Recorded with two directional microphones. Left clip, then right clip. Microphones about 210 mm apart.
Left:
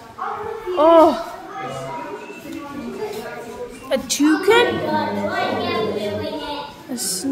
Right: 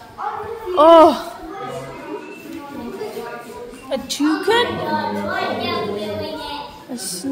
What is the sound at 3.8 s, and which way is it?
Speech, 10° left (ahead or behind).